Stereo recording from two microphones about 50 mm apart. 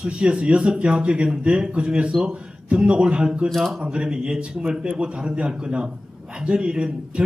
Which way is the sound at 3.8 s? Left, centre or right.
Centre.